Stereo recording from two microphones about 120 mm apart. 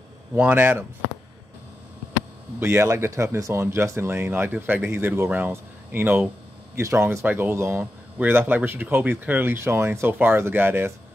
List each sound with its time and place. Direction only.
0.3 s speech: 15° right (ahead or behind)
2.6 s speech: 20° right (ahead or behind)